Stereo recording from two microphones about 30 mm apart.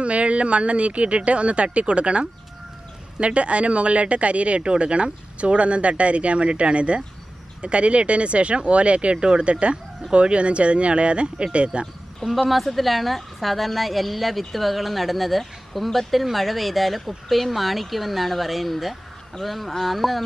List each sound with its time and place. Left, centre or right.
0.0 s speech: right
12.2 s speech: centre
12.7 s speech: centre